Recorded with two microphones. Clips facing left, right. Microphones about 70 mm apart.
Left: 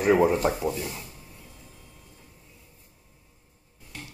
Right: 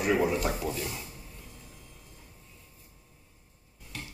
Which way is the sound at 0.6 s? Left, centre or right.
Left.